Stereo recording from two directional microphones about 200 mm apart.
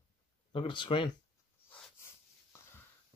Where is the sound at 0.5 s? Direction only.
25° left (ahead or behind).